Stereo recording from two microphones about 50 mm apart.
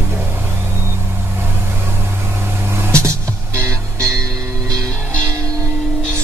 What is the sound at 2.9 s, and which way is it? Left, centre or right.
Music, right.